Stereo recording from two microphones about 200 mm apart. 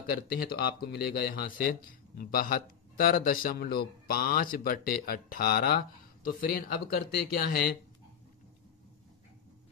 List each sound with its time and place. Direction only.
0.6 s a man's voice: 50° left (ahead or behind)